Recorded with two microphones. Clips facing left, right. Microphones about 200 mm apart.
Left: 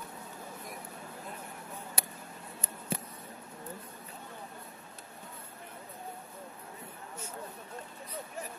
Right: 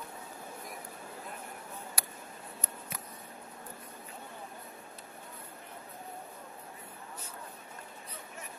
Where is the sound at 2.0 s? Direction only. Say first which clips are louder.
Left 2 dB; 25° left (ahead or behind).